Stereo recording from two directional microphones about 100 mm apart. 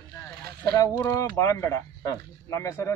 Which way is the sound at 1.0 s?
30° left (ahead or behind).